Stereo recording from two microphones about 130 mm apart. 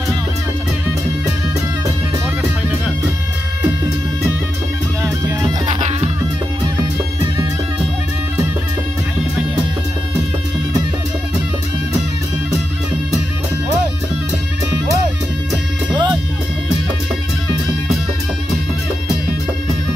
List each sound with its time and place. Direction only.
5.7 s music: 60° right (ahead or behind)
15.9 s music: 30° right (ahead or behind)